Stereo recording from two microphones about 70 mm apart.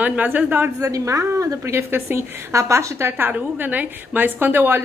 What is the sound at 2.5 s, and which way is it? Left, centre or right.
A woman's voice, right.